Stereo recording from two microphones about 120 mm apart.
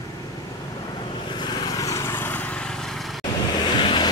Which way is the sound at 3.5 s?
40° left (ahead or behind).